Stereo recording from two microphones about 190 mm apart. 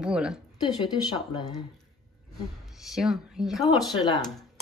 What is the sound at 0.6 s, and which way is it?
Speech, 20° left (ahead or behind).